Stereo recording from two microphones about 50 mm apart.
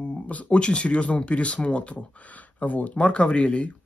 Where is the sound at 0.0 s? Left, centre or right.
Left.